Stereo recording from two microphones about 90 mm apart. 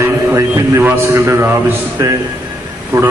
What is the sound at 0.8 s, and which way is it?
A man's voice, 25° right (ahead or behind).